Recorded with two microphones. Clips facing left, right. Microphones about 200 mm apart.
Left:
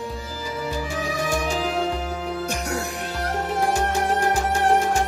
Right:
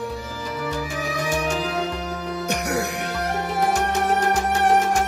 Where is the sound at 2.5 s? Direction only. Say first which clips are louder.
Right 3 dB; 65° right (ahead or behind).